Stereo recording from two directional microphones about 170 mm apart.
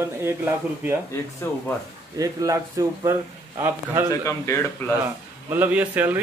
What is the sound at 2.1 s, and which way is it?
A man's voice, 20° right (ahead or behind).